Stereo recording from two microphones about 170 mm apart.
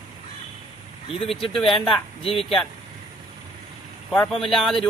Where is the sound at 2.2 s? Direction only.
30° left (ahead or behind).